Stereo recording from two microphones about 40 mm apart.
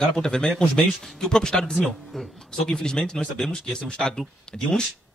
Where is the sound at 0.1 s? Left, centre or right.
Centre.